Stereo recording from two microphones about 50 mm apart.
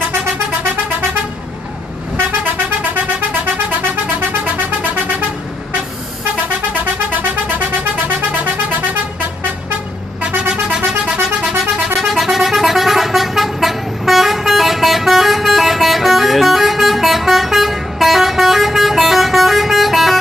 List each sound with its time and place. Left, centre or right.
3.2 s vehicle horn: right
7.2 s vehicle horn: right
12.0 s vehicle: centre